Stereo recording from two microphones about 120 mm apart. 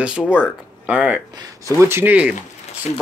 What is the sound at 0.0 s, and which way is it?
Speech, 10° right (ahead or behind).